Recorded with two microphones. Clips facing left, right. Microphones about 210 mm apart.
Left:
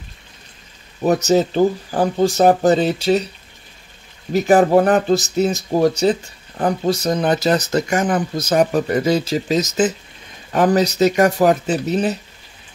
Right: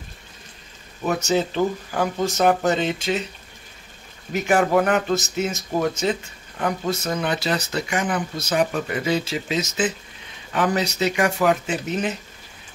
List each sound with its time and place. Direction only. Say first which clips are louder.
1.0 s speech: left 6 dB; 40° left (ahead or behind)
4.3 s speech: left 6 dB; 35° left (ahead or behind)